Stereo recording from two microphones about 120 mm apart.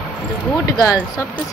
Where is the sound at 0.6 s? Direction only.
30° left (ahead or behind).